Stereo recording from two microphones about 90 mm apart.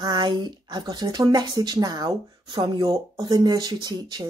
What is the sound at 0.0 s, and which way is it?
Speech, 50° right (ahead or behind).